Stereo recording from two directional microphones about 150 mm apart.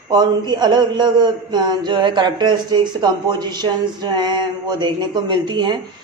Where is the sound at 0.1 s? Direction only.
30° right (ahead or behind).